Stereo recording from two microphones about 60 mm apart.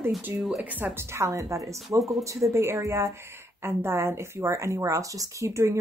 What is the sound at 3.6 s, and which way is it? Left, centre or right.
Speech, right.